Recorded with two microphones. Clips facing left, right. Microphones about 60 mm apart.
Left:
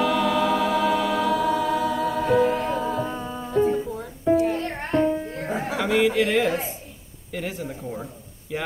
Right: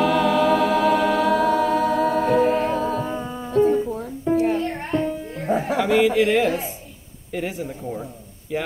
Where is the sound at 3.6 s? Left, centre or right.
Centre.